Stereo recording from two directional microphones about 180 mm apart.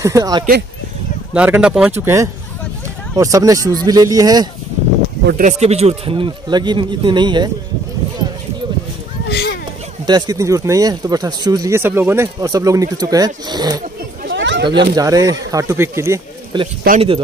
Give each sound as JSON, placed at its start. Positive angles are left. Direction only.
{"t": 0.0, "sound": "speech", "side_deg": -20}
{"t": 1.3, "sound": "speech", "side_deg": -5}
{"t": 5.2, "sound": "speech", "side_deg": -50}
{"t": 9.3, "sound": "a sound", "side_deg": 65}
{"t": 10.0, "sound": "speech", "side_deg": -20}
{"t": 14.3, "sound": "a sound", "side_deg": -85}
{"t": 15.0, "sound": "speech", "side_deg": -20}